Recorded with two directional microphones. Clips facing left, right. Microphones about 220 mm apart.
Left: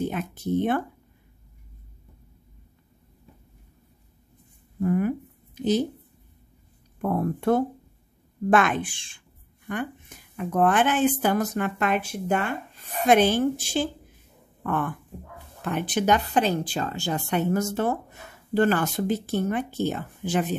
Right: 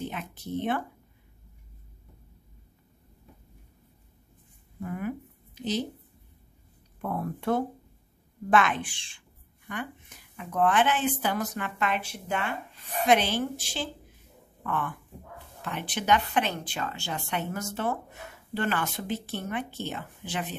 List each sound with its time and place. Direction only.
0.0 s a woman's voice: 50° left (ahead or behind)
4.7 s speech: 45° left (ahead or behind)
7.0 s a woman's voice: 50° left (ahead or behind)